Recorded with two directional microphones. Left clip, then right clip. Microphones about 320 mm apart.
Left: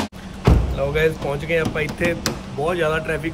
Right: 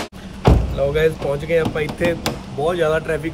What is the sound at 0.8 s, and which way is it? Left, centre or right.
Speech, centre.